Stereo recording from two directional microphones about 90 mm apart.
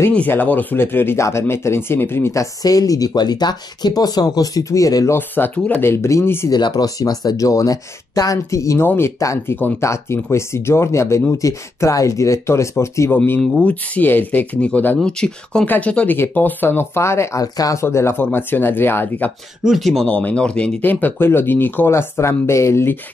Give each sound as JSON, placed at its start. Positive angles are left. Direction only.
{"t": 0.1, "sound": "speech", "side_deg": 20}
{"t": 2.6, "sound": "speech", "side_deg": 40}
{"t": 5.1, "sound": "speech", "side_deg": 20}
{"t": 6.5, "sound": "speech", "side_deg": 50}
{"t": 9.2, "sound": "speech", "side_deg": 35}
{"t": 13.4, "sound": "speech", "side_deg": 15}
{"t": 17.8, "sound": "speech", "side_deg": 30}
{"t": 19.6, "sound": "speech", "side_deg": 0}